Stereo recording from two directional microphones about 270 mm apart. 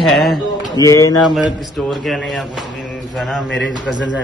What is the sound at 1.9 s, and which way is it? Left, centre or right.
A man's voice, centre.